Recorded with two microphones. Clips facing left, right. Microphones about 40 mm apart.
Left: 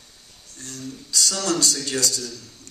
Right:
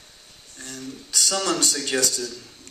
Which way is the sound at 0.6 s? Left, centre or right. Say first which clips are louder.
Even; right.